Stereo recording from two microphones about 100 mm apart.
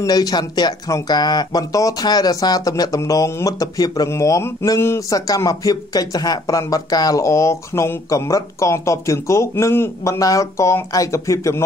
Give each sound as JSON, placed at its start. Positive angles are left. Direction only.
{"t": 0.0, "sound": "speech", "side_deg": 40}